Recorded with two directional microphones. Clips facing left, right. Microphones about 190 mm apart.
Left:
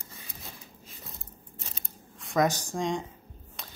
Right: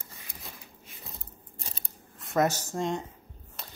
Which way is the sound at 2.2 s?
5° right (ahead or behind).